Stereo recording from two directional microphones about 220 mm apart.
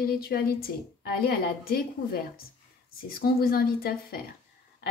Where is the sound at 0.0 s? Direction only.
45° left (ahead or behind).